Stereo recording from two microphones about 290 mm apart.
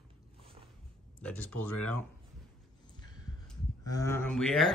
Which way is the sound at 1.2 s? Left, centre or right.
Centre.